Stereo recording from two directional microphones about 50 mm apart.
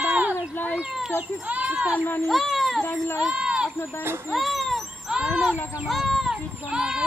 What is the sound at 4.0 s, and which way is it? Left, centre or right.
Speech, right.